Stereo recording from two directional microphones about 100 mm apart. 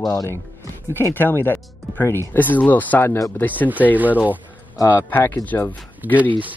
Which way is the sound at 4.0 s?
15° right (ahead or behind).